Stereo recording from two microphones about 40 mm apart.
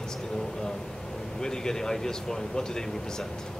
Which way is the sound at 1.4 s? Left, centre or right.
Centre.